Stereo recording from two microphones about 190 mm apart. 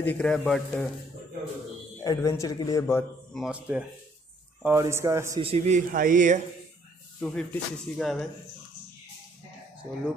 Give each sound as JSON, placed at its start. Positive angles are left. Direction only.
{"t": 0.0, "sound": "a man's voice", "side_deg": 10}
{"t": 2.0, "sound": "a man's voice", "side_deg": 15}
{"t": 3.3, "sound": "speech", "side_deg": -5}
{"t": 5.4, "sound": "a man's voice", "side_deg": -35}
{"t": 5.9, "sound": "speech", "side_deg": -45}
{"t": 7.2, "sound": "speech", "side_deg": 5}